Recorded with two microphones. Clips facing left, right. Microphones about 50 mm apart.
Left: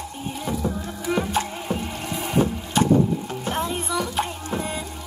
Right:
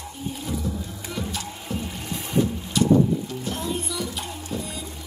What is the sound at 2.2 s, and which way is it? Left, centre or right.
Boat, left.